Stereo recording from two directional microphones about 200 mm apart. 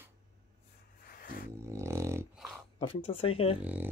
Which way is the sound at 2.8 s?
25° left (ahead or behind).